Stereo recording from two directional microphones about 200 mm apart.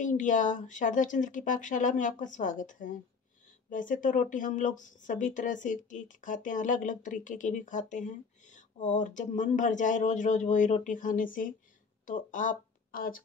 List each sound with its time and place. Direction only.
0.0 s speech: 40° left (ahead or behind)